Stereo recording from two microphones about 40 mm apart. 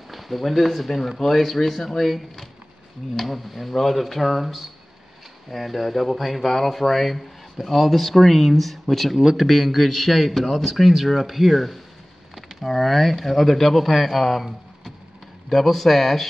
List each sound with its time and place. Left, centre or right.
0.1 s speech: centre
9.2 s speech: centre
15.5 s speech: centre